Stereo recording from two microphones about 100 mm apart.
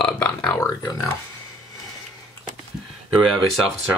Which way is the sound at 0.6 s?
35° left (ahead or behind).